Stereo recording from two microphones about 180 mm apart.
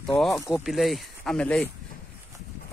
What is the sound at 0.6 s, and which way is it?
Speech, centre (ahead or behind).